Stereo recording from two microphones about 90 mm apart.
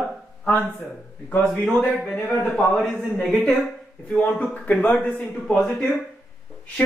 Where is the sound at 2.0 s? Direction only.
5° left (ahead or behind).